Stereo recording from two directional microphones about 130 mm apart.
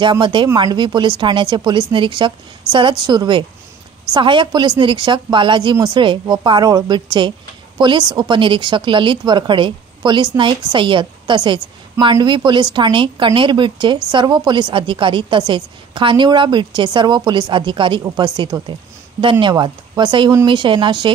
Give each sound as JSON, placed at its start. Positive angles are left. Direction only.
{"t": 0.0, "sound": "a woman's voice", "side_deg": -40}